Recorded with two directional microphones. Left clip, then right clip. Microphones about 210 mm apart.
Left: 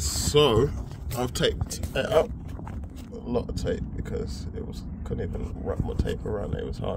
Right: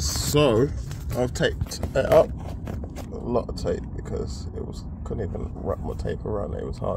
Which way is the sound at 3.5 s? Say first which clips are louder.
Right 2 dB; 25° right (ahead or behind).